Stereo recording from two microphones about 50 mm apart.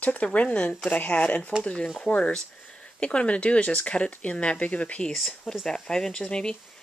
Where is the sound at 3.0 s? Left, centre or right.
Left.